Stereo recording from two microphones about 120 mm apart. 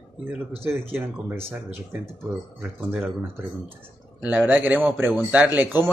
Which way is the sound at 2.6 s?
15° right (ahead or behind).